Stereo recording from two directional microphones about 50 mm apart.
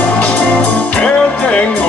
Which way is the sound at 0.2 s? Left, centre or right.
Left.